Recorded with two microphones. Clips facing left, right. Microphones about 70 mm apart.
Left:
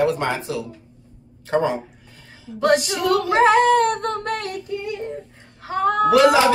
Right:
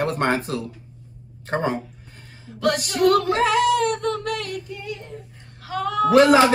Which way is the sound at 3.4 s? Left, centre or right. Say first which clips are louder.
Left 4 dB; left.